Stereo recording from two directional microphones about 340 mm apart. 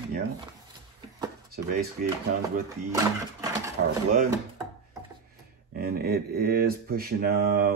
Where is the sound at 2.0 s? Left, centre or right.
Right.